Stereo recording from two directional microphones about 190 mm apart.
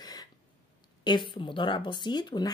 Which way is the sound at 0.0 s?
20° left (ahead or behind).